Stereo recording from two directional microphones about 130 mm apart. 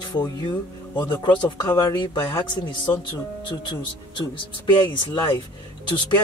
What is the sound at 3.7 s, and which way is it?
Speech, 35° left (ahead or behind).